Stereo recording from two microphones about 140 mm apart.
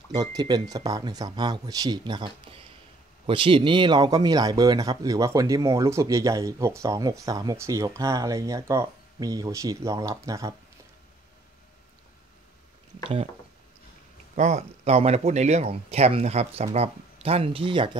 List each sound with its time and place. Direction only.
0.1 s speech: 30° right (ahead or behind)
13.0 s speech: 40° right (ahead or behind)
14.3 s speech: 50° right (ahead or behind); by 17.9 s 35° right (ahead or behind)